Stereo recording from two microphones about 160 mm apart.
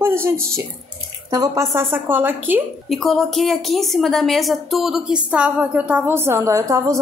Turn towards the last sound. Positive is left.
turn(degrees=-20)  # may be behind; listen again after turning